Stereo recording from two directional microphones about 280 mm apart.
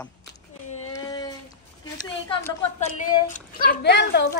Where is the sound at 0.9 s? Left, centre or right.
Centre.